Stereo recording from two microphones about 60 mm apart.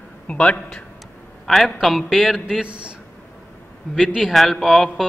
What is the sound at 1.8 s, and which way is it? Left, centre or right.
Speech, centre.